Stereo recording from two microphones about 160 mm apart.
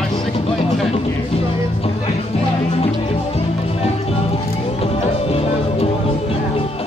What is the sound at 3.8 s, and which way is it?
Music, 40° left (ahead or behind).